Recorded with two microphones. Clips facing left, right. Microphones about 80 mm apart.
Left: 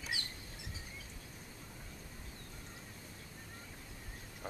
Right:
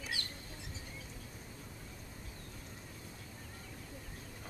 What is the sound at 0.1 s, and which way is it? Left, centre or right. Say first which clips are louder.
Bird: left 1 dB; centre.